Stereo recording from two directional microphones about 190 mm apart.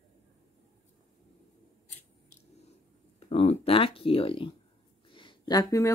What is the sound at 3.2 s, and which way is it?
Speech, 35° left (ahead or behind).